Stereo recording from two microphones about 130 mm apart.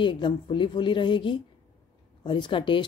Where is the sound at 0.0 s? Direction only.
40° left (ahead or behind).